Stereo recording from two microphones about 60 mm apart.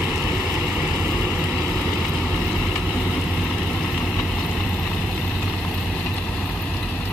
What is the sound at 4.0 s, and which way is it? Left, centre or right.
Vehicle, left.